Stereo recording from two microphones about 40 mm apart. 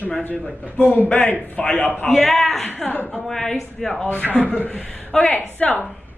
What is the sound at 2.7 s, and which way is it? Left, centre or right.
Speech, left.